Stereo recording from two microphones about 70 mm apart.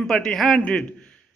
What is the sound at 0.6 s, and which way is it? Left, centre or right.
Speech, centre.